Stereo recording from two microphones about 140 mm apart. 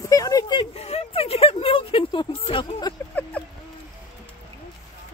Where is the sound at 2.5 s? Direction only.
35° left (ahead or behind).